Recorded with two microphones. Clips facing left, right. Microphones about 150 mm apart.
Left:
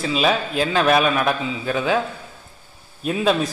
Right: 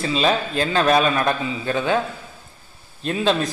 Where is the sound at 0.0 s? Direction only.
5° left (ahead or behind).